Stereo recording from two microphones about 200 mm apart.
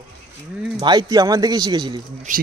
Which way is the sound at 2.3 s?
40° right (ahead or behind).